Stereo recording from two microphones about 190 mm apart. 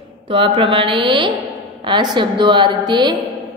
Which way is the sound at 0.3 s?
25° right (ahead or behind).